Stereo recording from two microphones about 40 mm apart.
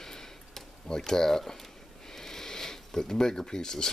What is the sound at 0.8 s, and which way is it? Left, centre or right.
Speech, centre.